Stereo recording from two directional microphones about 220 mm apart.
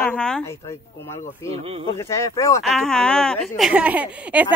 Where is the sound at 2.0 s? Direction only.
15° left (ahead or behind).